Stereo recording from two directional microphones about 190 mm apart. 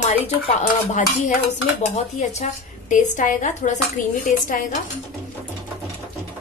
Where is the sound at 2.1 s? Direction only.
35° left (ahead or behind).